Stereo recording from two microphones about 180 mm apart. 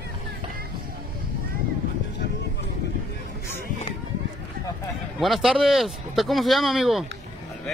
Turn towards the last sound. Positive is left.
turn(degrees=0)  # may be behind; listen again after turning